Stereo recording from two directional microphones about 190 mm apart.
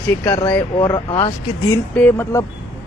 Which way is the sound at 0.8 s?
25° left (ahead or behind).